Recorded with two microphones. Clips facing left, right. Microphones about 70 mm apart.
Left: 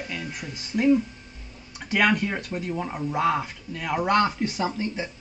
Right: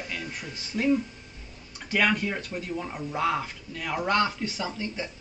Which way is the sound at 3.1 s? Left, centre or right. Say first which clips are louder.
Left 3 dB; centre.